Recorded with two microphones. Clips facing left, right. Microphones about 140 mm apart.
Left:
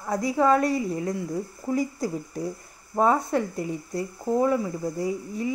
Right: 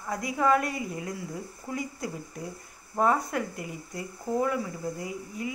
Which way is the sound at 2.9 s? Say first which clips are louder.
Left 4 dB; 25° left (ahead or behind).